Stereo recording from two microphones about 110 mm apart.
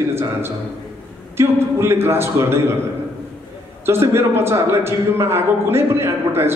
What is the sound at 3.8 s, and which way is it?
A man's voice, 25° right (ahead or behind).